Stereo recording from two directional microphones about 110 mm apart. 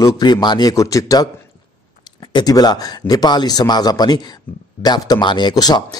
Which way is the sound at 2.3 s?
35° left (ahead or behind).